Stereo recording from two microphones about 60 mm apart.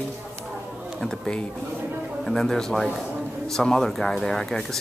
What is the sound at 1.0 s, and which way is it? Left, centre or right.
Speech, centre.